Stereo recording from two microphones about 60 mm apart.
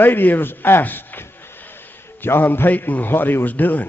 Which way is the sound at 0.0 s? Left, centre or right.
Left.